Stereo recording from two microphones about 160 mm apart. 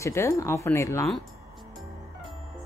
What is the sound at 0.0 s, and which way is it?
Speech, 20° left (ahead or behind).